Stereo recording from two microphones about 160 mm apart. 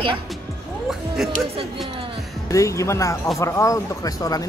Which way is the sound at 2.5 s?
20° left (ahead or behind).